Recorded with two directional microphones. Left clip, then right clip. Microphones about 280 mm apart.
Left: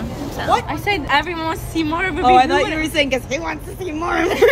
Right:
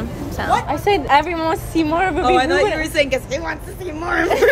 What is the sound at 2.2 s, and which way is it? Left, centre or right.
A woman's voice, left.